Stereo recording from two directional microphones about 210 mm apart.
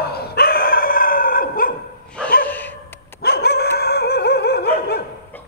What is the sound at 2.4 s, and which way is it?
Dog, 10° left (ahead or behind).